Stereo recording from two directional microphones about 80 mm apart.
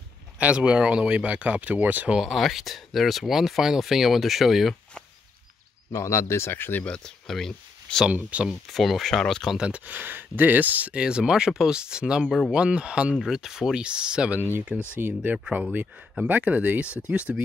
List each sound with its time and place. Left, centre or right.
0.4 s speech: centre
2.1 s speech: centre
5.9 s speech: left
6.8 s speech: centre
8.1 s speech: centre
8.5 s speech: centre
9.6 s speech: centre
15.0 s speech: right
15.3 s speech: centre